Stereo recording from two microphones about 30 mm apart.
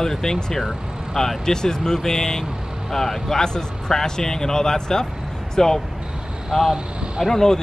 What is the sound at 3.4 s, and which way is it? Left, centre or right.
Speech, left.